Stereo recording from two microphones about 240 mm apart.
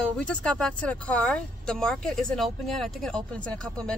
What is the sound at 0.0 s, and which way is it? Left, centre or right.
Speech, centre.